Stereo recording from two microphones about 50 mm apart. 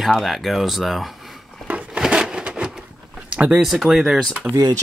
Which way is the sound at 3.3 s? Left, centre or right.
Right.